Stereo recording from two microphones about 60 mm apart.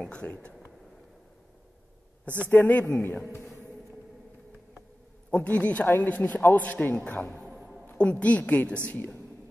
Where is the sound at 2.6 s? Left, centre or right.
Left.